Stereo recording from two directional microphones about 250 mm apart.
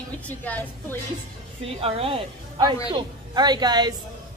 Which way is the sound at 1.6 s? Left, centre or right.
Right.